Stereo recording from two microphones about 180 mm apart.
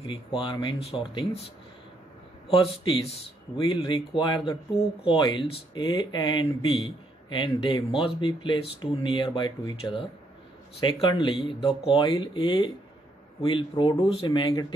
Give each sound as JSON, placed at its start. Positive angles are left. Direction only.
{"t": 0.0, "sound": "speech", "side_deg": 30}
{"t": 2.5, "sound": "speech", "side_deg": 30}